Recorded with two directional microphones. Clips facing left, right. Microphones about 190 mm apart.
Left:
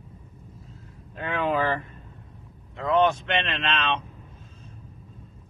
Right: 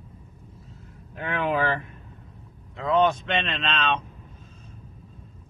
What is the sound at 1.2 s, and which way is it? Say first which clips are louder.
Speech: even; 10° right (ahead or behind).